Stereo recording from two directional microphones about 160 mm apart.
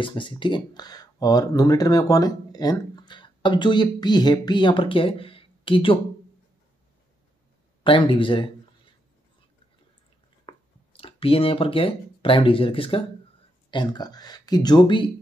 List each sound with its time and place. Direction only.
0.0 s speech: 30° left (ahead or behind)
7.8 s speech: 30° left (ahead or behind)
10.4 s speech: 35° left (ahead or behind)